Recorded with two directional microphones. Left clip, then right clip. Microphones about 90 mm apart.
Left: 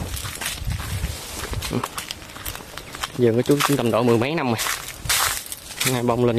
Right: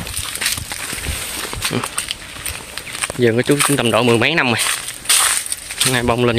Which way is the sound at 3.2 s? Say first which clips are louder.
Right 3 dB; 5° left (ahead or behind).